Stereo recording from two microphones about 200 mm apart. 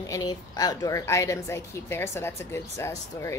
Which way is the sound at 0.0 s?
20° left (ahead or behind).